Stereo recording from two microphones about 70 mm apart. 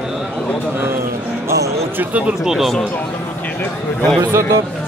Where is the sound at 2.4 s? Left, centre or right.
Centre.